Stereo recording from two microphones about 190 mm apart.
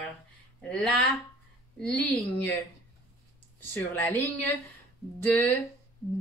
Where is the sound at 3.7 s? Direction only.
10° left (ahead or behind).